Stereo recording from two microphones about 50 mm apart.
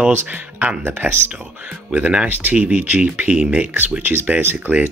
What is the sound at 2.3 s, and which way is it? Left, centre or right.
Speech, right.